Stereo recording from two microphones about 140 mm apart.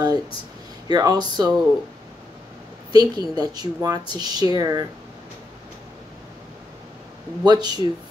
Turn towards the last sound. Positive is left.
turn(degrees=-30)  # may be behind; listen again after turning